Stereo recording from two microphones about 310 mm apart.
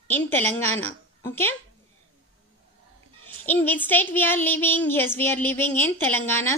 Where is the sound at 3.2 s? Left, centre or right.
Centre.